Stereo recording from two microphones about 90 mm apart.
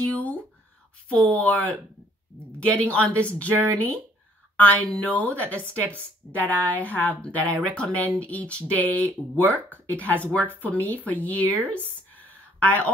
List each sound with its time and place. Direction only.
0.1 s speech: 20° left (ahead or behind)
3.4 s speech: 25° right (ahead or behind)
3.7 s speech: 20° left (ahead or behind)